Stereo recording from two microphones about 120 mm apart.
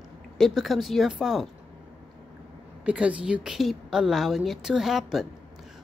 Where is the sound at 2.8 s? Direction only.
10° right (ahead or behind).